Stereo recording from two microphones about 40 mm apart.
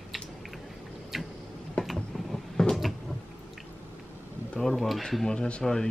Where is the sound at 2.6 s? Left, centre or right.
Centre.